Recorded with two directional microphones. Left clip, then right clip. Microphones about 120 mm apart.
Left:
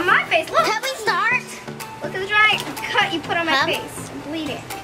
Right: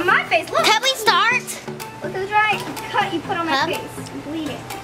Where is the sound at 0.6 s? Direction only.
60° right (ahead or behind).